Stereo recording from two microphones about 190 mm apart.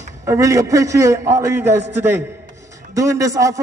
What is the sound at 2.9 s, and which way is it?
Speech, 15° right (ahead or behind).